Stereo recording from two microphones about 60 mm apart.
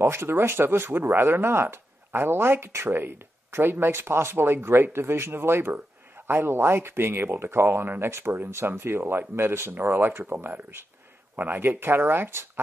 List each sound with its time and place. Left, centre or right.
0.0 s speech: right